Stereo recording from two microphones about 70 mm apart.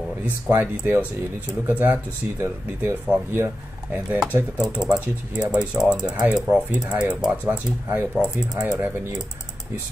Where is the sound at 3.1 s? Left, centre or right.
Centre.